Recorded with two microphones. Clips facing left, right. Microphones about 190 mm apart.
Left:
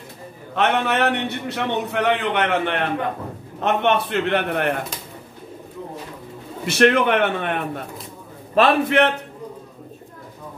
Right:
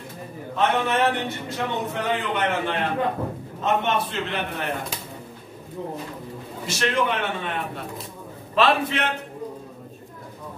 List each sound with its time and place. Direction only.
0.6 s a man's voice: 70° left (ahead or behind)
6.6 s a man's voice: 60° left (ahead or behind)